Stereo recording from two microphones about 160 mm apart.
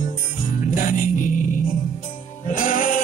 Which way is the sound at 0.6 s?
55° left (ahead or behind).